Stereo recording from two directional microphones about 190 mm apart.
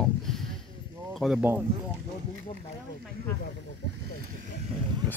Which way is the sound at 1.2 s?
5° right (ahead or behind).